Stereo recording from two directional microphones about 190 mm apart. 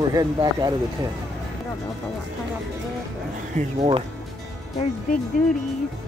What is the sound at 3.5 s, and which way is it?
Speech, 35° right (ahead or behind).